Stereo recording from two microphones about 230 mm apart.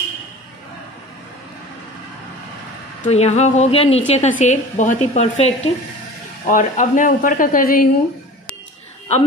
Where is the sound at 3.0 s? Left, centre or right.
Left.